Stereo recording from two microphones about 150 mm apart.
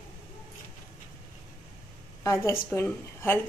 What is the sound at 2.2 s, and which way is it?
A woman's voice, 20° left (ahead or behind).